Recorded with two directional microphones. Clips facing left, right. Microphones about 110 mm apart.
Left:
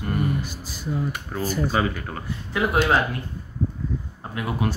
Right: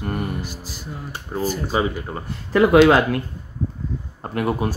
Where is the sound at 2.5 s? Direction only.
85° right.